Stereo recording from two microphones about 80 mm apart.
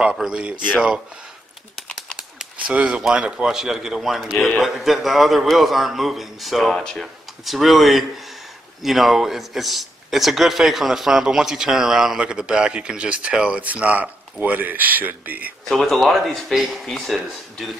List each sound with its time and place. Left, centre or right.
0.3 s a man's voice: centre
2.1 s a man's voice: centre
15.7 s a man's voice: centre